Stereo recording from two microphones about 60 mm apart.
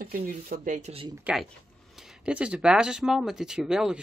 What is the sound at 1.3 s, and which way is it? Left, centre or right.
Speech, right.